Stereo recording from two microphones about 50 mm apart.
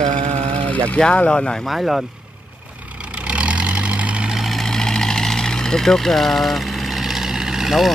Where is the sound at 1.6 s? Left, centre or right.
Centre.